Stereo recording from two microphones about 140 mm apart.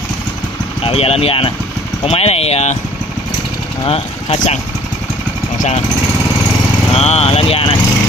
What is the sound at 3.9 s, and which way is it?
Speech, 45° left (ahead or behind).